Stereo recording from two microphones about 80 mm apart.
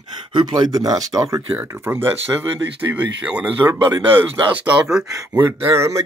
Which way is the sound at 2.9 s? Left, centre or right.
Centre.